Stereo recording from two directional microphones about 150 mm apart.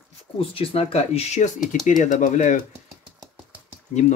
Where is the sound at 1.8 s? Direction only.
55° left (ahead or behind).